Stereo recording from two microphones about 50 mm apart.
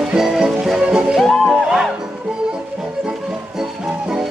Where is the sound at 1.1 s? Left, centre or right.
Centre.